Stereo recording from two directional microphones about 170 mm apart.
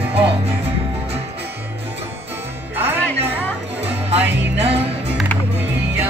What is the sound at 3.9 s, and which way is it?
Music, 35° right (ahead or behind).